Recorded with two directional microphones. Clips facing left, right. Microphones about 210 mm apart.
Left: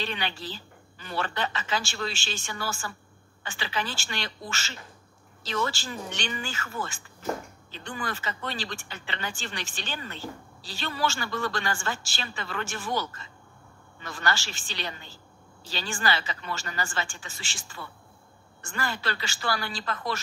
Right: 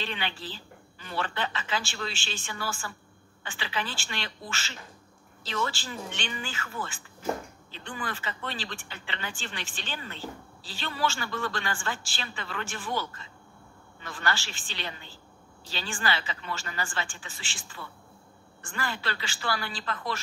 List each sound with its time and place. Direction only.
0.0 s a woman's voice: 40° left (ahead or behind)
14.0 s a woman's voice: 40° left (ahead or behind)